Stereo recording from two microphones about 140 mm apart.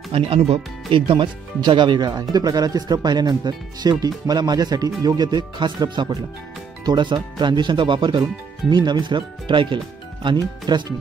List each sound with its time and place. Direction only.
0.1 s speech: 40° right (ahead or behind)